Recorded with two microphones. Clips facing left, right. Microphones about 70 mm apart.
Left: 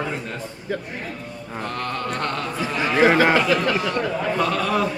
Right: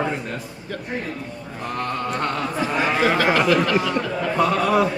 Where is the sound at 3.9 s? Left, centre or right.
Centre.